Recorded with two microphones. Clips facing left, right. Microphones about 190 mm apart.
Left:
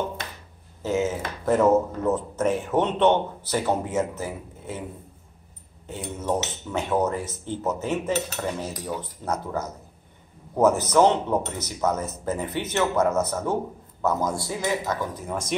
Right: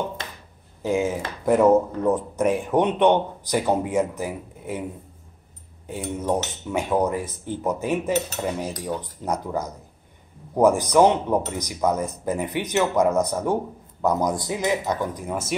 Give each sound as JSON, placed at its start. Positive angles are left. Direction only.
{"t": 0.8, "sound": "speech", "side_deg": -10}
{"t": 5.9, "sound": "speech", "side_deg": -10}